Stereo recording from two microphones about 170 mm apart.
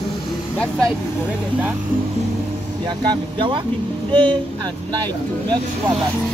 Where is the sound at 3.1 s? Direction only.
30° right (ahead or behind).